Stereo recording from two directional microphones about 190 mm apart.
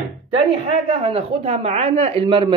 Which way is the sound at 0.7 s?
35° right (ahead or behind).